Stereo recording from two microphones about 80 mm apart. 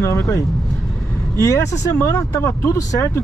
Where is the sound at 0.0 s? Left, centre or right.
Left.